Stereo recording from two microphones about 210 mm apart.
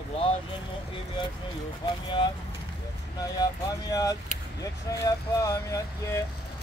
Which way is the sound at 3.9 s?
15° left (ahead or behind).